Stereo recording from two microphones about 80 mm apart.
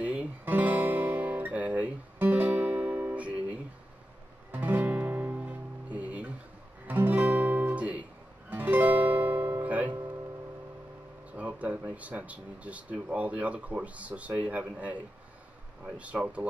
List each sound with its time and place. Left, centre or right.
0.0 s guitar: centre
4.5 s music: right
6.9 s guitar: right
11.3 s speech: centre
15.8 s speech: centre